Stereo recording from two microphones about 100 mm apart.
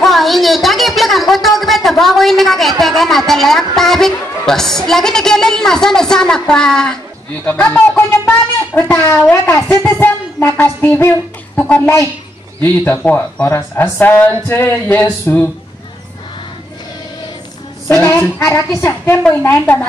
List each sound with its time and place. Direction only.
0.0 s a sound: centre (ahead or behind)
2.8 s a woman's voice: centre (ahead or behind)
9.3 s a woman's voice: 25° left (ahead or behind)
17.9 s a child's voice: 15° left (ahead or behind)